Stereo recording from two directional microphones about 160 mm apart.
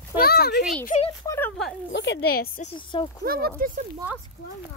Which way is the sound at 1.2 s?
15° left (ahead or behind).